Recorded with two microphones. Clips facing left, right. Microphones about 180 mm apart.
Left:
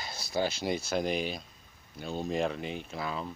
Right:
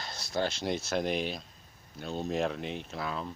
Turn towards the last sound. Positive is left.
turn(degrees=0)  # may be behind; listen again after turning